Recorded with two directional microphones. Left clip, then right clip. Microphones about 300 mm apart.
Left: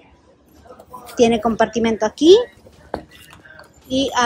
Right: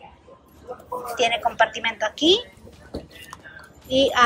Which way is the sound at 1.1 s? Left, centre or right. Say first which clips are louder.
Left 5 dB; centre.